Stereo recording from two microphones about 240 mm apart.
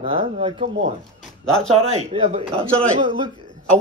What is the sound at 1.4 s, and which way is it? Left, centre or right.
Speech, centre.